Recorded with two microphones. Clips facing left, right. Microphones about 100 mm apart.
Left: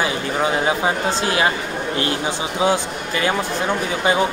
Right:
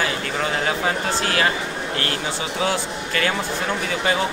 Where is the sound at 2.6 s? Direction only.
20° left (ahead or behind).